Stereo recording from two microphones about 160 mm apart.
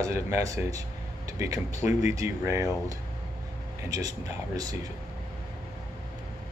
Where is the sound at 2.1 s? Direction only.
20° right (ahead or behind).